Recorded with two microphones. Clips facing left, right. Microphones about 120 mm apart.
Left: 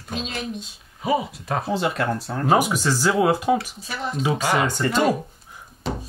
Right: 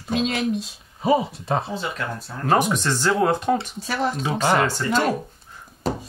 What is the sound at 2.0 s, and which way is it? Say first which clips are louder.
Speech: left 6 dB; 80° left.